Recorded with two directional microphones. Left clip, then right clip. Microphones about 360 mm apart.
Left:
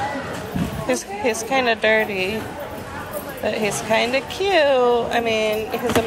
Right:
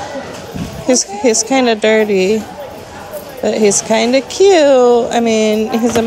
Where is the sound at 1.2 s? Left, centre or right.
Centre.